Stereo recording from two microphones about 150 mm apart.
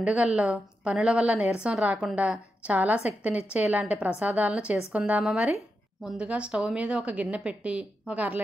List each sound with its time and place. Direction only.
0.0 s a woman's voice: 5° right (ahead or behind)